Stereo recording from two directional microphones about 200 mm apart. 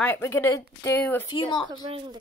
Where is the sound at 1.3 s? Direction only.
20° left (ahead or behind).